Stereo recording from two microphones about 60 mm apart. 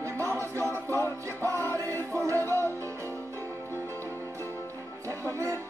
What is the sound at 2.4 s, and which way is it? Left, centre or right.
Music, left.